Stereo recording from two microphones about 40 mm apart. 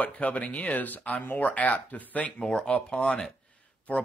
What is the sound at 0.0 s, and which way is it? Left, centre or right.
Speech, left.